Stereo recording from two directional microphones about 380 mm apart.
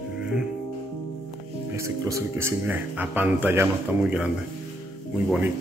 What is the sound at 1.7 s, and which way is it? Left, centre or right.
Speech, centre.